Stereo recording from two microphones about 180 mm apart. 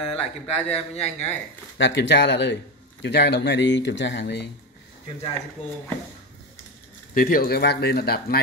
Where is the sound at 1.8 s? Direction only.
85° left.